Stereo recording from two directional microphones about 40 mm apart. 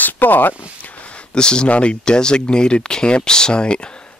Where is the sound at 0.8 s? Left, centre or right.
Left.